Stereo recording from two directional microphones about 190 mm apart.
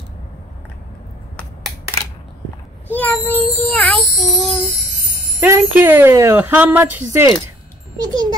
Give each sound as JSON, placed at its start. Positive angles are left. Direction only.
{"t": 2.9, "sound": "a child's voice", "side_deg": 10}
{"t": 5.4, "sound": "a child's voice", "side_deg": -10}